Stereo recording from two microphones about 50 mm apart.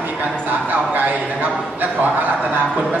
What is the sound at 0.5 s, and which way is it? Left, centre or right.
A man's voice, right.